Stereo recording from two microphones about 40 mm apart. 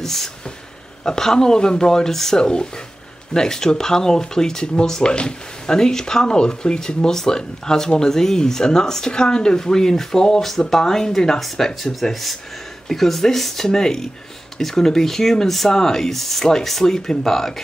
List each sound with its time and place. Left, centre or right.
0.0 s speech: centre
2.4 s speech: left